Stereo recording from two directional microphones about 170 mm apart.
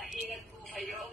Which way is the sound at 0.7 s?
Centre (ahead or behind).